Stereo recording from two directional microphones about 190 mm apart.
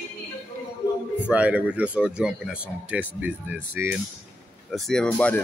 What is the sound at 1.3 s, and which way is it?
Speech, 5° right (ahead or behind).